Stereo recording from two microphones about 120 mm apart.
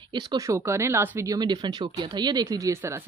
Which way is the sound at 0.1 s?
40° right (ahead or behind).